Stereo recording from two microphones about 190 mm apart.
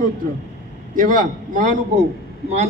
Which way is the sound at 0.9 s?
45° right (ahead or behind).